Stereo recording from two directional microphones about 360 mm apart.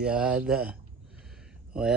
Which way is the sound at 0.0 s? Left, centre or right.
Centre.